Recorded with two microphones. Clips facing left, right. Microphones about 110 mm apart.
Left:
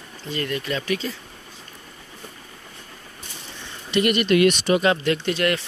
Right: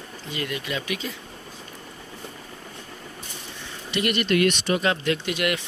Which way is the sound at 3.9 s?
Centre (ahead or behind).